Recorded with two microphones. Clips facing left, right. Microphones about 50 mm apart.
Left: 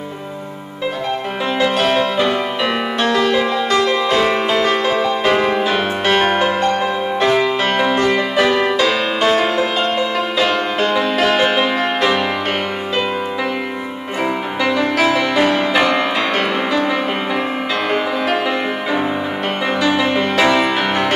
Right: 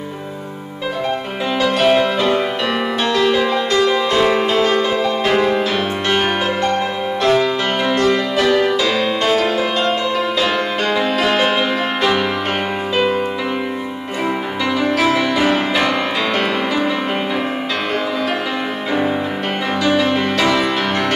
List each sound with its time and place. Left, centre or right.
1.6 s music: centre
3.0 s music: centre
10.4 s music: centre
14.6 s music: centre
19.8 s music: centre